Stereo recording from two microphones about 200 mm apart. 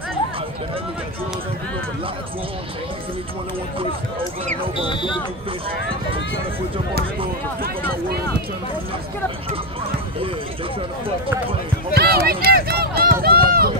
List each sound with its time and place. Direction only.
4.7 s speech: 25° left (ahead or behind)
11.9 s run: 50° right (ahead or behind)